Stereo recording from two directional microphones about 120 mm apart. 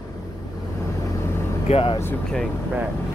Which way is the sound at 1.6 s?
55° left (ahead or behind).